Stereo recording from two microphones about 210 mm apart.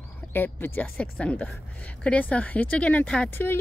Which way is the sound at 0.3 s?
10° left (ahead or behind).